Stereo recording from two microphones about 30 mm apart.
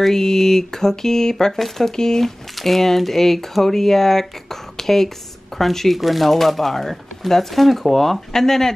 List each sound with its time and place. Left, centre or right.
0.0 s speech: centre
2.6 s speech: centre